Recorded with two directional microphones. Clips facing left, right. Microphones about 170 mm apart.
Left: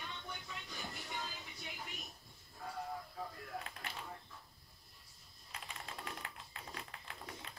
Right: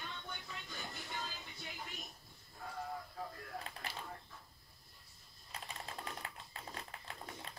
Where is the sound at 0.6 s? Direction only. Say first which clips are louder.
Even; centre (ahead or behind).